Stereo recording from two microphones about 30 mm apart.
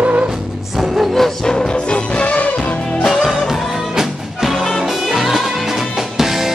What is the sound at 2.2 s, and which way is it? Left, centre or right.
Music, left.